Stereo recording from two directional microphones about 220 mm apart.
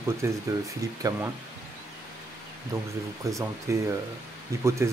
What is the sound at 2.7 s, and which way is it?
Speech, 15° right (ahead or behind).